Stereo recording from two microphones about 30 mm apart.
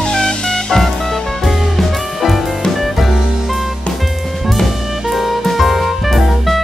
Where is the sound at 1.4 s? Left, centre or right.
Centre.